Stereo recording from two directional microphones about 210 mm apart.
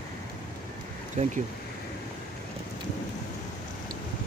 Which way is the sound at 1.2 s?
35° right (ahead or behind).